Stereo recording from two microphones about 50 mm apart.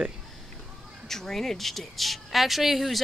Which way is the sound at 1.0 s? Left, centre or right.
Centre.